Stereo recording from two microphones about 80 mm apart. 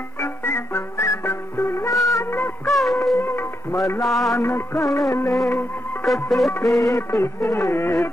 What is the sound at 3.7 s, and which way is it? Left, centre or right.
Music, left.